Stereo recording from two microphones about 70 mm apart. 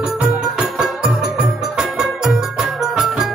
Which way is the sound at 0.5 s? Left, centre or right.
Centre.